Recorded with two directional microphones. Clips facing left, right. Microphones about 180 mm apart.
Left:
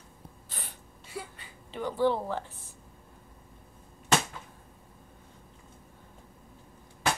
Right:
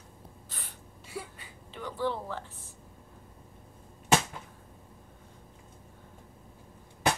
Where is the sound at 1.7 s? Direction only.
25° left (ahead or behind).